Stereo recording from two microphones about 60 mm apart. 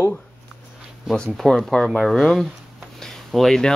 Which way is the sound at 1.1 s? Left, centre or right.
Centre.